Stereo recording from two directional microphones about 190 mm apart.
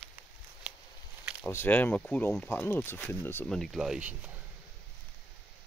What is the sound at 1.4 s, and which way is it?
Speech, 10° left (ahead or behind).